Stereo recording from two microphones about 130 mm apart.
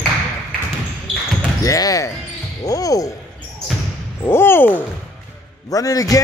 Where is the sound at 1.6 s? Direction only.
25° left (ahead or behind).